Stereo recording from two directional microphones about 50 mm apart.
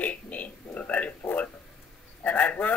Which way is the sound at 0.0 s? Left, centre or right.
Left.